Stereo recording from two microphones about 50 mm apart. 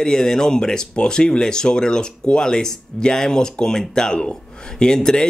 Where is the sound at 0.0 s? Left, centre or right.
Centre.